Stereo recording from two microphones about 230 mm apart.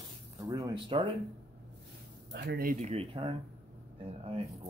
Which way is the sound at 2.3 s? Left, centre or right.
Right.